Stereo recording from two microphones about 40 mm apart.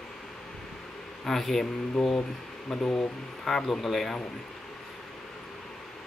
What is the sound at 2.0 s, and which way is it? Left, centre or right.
Speech, centre.